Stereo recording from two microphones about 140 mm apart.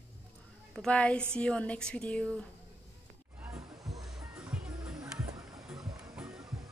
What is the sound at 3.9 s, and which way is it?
Music, 5° right (ahead or behind).